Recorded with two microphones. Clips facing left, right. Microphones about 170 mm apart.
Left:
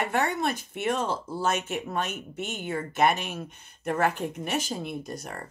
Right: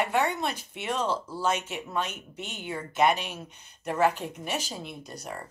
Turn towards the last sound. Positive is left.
turn(degrees=50)  # may be behind; listen again after turning